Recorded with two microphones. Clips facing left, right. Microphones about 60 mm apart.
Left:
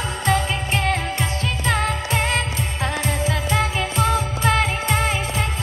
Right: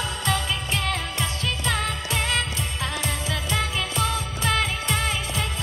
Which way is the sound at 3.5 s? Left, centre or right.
Left.